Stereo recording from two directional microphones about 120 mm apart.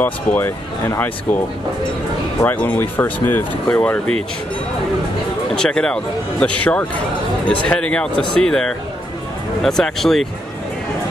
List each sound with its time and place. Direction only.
0.0 s speech: 20° left (ahead or behind)
2.4 s speech: 15° left (ahead or behind)
5.6 s speech: 5° left (ahead or behind)